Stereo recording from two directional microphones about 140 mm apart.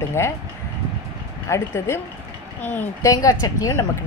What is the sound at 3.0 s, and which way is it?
Speech, 25° left (ahead or behind).